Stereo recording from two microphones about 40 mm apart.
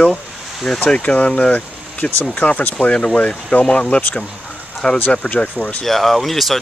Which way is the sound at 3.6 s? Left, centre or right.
Left.